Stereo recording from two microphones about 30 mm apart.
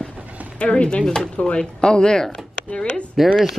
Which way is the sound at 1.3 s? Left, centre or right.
Left.